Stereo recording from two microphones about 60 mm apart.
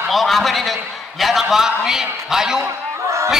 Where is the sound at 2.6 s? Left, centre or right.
Right.